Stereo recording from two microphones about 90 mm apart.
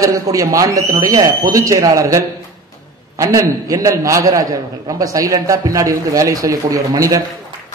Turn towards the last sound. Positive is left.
turn(degrees=-40)  # may be behind; listen again after turning